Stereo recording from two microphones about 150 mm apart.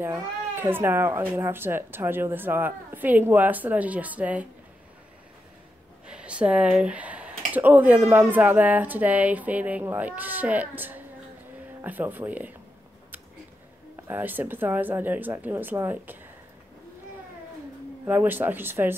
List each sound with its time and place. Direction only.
0.0 s speech: 15° right (ahead or behind)
6.0 s speech: 5° right (ahead or behind)
14.0 s speech: 10° right (ahead or behind)
18.0 s speech: 10° right (ahead or behind)